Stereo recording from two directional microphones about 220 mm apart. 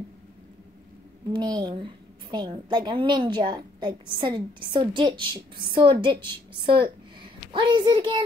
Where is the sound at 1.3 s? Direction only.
20° right (ahead or behind).